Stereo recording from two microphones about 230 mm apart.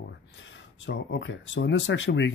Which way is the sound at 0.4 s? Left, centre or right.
Left.